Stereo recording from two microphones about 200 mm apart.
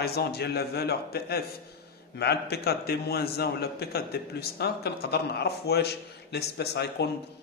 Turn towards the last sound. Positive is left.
turn(degrees=55)  # may be behind; listen again after turning